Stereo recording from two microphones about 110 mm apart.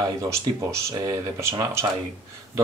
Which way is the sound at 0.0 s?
25° right (ahead or behind).